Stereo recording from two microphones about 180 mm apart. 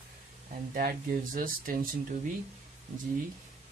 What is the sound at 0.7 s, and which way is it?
Speech, 50° right (ahead or behind).